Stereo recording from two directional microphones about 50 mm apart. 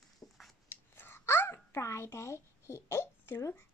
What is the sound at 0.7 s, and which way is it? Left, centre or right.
Babbling, left.